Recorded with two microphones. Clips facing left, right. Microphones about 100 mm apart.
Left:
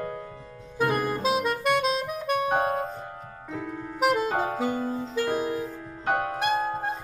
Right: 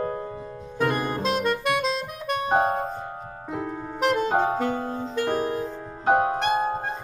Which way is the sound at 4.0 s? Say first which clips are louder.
Even; 5° left (ahead or behind).